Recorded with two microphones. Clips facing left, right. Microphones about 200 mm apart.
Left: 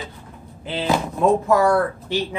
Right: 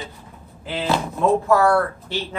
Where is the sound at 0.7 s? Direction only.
25° left (ahead or behind).